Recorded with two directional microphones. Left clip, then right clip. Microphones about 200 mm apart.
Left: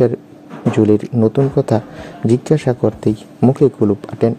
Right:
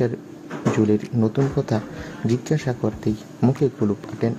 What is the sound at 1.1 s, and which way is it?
Speech, 30° left (ahead or behind).